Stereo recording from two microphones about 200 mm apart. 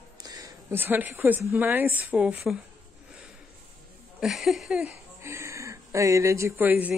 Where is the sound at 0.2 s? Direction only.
20° right (ahead or behind).